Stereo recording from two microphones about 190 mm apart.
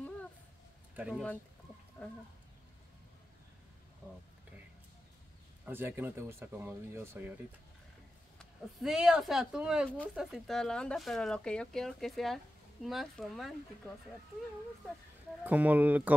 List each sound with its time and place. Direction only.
0.9 s speech: 5° right (ahead or behind)
2.0 s speech: 10° left (ahead or behind)
5.7 s speech: 10° right (ahead or behind)
8.4 s speech: centre (ahead or behind)
15.4 s speech: 10° right (ahead or behind)